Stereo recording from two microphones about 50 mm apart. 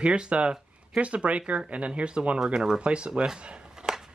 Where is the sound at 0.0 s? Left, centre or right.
Right.